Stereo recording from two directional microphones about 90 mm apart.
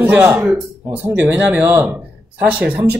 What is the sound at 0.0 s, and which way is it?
Speech, 15° right (ahead or behind).